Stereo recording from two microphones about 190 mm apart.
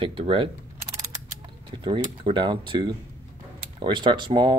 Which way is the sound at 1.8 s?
25° right (ahead or behind).